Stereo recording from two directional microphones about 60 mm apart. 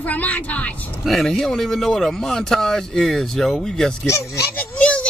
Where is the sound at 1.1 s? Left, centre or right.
Centre.